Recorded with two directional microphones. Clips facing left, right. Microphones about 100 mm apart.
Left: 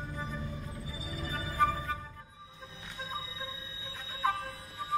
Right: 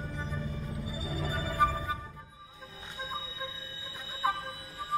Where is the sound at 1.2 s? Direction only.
15° right (ahead or behind).